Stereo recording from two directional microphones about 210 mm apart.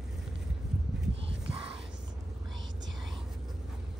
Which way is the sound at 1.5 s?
25° right (ahead or behind).